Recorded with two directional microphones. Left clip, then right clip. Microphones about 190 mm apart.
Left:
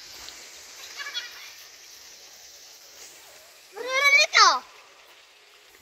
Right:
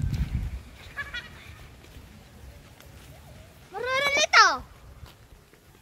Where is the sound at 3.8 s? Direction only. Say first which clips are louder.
Left 5 dB; 55° left (ahead or behind).